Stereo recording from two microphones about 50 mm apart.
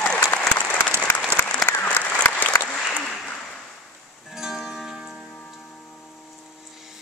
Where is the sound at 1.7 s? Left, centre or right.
Left.